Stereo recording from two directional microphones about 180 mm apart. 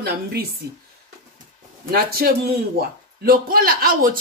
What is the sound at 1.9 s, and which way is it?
Speech, 55° right (ahead or behind).